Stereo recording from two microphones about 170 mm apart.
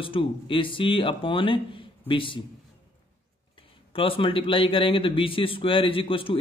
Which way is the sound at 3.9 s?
30° left (ahead or behind).